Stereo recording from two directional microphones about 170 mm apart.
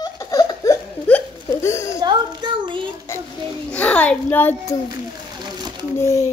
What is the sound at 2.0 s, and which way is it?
Speech, 25° right (ahead or behind).